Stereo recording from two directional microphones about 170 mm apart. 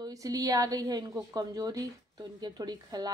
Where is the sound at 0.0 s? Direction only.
20° right (ahead or behind).